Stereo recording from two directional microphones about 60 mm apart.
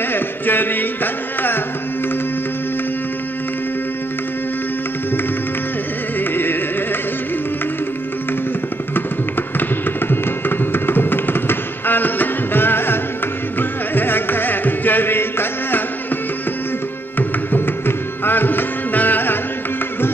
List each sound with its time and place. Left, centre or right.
0.1 s music: left
6.1 s music: left
9.6 s music: left
17.2 s music: left